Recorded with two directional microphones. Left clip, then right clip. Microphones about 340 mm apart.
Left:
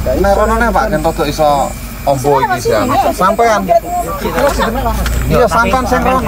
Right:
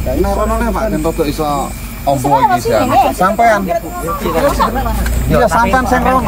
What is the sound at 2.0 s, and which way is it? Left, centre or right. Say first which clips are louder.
Speech: even; centre.